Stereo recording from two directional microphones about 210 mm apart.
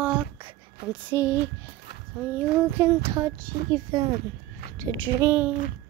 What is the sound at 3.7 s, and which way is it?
Speech, 20° right (ahead or behind).